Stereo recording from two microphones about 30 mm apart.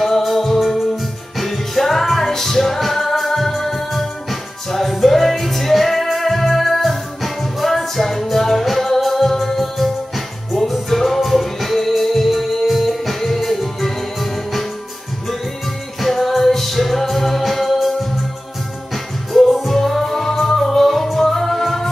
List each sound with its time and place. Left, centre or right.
0.0 s music: centre
16.0 s music: centre
19.3 s music: centre